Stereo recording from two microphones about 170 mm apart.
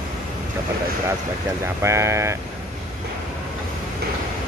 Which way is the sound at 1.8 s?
15° right (ahead or behind).